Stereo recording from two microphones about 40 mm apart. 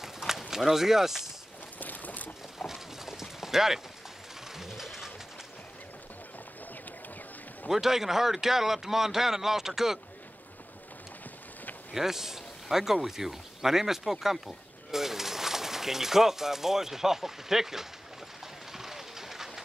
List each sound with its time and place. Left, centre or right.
0.0 s a sound: centre
1.8 s boat: left
2.6 s clip-clop: centre
4.6 s a sound: centre
7.6 s speech: centre
11.9 s speech: centre
18.7 s train: centre